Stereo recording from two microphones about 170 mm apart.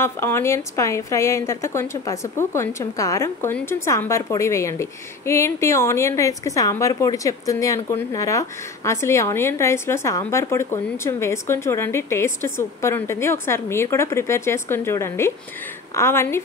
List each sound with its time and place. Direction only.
0.0 s a woman's voice: 15° left (ahead or behind)